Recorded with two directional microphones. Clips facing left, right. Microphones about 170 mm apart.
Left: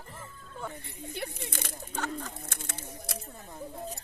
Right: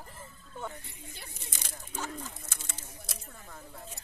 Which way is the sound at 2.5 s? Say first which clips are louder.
Left 6 dB; 60° left (ahead or behind).